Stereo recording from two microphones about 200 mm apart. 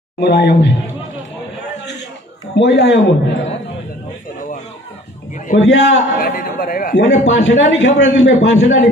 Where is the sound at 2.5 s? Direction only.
60° left (ahead or behind).